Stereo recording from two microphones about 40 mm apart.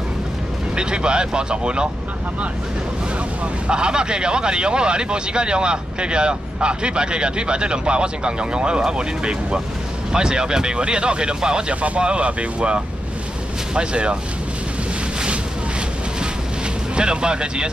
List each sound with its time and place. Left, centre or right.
0.7 s speech: right
3.6 s speech: right
11.7 s speech: right
16.9 s speech: right